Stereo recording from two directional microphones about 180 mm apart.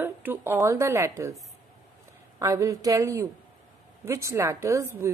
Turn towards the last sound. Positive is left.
turn(degrees=-15)  # may be behind; listen again after turning